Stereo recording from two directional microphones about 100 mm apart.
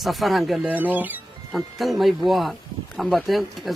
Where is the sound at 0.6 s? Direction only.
15° right (ahead or behind).